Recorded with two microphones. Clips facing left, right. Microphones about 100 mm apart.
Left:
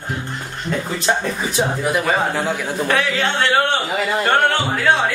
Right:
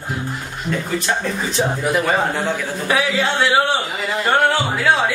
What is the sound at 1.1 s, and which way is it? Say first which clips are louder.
Speech: left 4 dB; 20° left (ahead or behind).